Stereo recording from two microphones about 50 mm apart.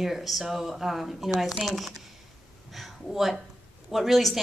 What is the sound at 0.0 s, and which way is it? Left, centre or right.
A woman's voice, centre.